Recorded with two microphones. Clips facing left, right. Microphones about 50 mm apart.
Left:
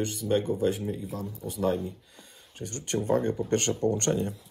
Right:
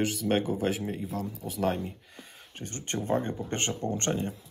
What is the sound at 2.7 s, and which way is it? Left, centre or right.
Speech, right.